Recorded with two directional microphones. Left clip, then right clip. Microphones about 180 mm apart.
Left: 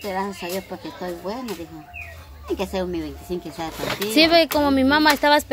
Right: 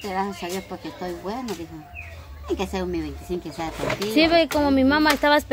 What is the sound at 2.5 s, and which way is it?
Speech, 10° right (ahead or behind).